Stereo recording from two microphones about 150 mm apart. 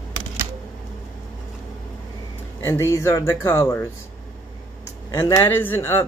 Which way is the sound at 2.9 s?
20° left (ahead or behind).